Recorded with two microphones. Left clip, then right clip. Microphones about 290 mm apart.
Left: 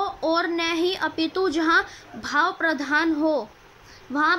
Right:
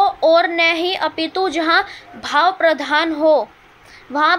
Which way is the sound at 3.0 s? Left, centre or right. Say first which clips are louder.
Right 8 dB; right.